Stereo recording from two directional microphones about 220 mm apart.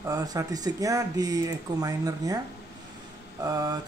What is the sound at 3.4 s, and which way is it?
Speech, 15° right (ahead or behind).